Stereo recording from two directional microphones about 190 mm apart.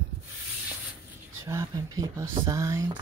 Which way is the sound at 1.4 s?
15° right (ahead or behind).